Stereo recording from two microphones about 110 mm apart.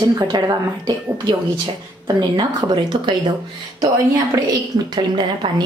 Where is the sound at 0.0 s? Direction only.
35° right (ahead or behind).